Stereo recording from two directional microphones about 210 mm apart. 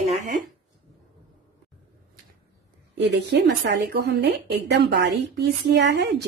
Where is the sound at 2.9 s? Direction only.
55° right (ahead or behind).